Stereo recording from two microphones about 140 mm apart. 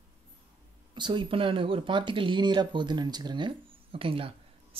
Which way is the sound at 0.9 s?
35° right (ahead or behind).